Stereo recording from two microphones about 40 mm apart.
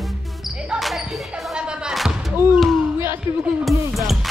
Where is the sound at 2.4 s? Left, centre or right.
Right.